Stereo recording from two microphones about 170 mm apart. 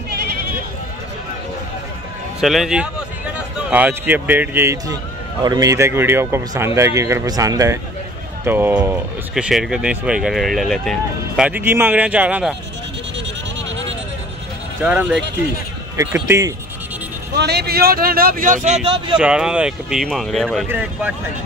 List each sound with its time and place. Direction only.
2.4 s a man's voice: centre (ahead or behind)
14.8 s speech: 10° right (ahead or behind)
17.4 s speech: 75° right (ahead or behind); by 18.8 s 50° right (ahead or behind)
19.1 s speech: 5° right (ahead or behind)
20.6 s speech: 10° right (ahead or behind)